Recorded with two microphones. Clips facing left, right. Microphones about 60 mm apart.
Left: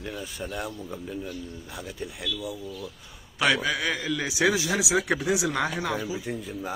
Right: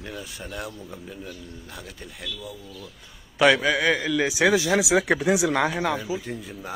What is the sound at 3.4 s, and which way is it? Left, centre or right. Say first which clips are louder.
Speech: right 5 dB; right.